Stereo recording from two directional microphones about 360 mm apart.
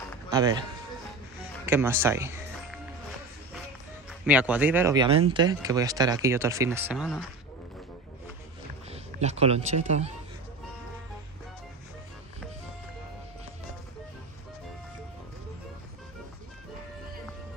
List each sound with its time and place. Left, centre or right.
0.3 s a man's voice: centre
1.7 s speech: centre
4.3 s speech: centre
8.9 s speech: centre